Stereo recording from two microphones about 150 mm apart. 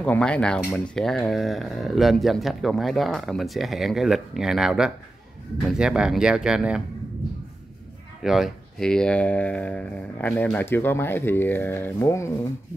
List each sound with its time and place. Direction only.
0.0 s speech: 5° left (ahead or behind)
8.2 s speech: centre (ahead or behind); by 12.3 s 15° left (ahead or behind)